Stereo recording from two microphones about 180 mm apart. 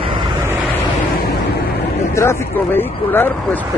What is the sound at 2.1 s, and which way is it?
Speech, 15° left (ahead or behind).